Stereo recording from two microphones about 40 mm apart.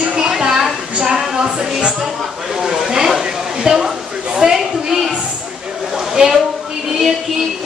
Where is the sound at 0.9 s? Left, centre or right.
Right.